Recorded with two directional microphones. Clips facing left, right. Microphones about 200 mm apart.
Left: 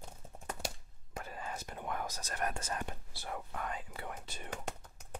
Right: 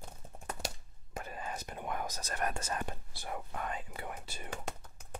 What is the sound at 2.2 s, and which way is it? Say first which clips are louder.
Speech: right 2 dB; 75° right (ahead or behind).